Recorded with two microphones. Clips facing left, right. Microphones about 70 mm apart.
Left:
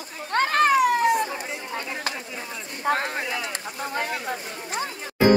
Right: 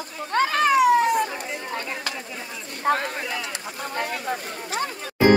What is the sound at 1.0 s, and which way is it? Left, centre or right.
Speech, right.